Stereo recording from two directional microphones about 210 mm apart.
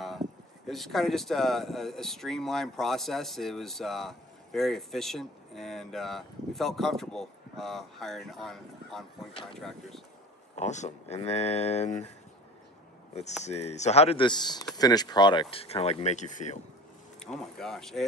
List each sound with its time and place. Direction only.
0.7 s speech: centre (ahead or behind)
10.5 s speech: 35° left (ahead or behind)
13.1 s speech: 35° left (ahead or behind)
17.2 s speech: centre (ahead or behind)